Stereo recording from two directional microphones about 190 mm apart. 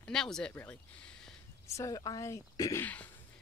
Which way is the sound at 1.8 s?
20° left (ahead or behind).